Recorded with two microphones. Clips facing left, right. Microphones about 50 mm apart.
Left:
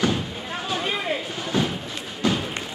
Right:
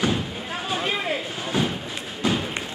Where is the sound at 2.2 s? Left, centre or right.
Right.